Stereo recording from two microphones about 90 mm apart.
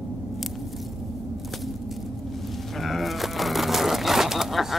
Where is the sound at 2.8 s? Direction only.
Centre (ahead or behind).